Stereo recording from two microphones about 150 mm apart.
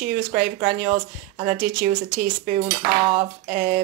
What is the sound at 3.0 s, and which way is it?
Cutlery, 35° right (ahead or behind).